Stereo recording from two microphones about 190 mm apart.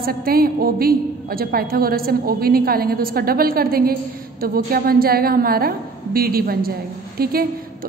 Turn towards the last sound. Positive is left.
turn(degrees=-50)  # may be behind; listen again after turning